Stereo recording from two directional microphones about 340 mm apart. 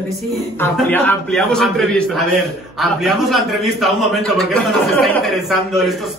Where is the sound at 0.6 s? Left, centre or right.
Centre.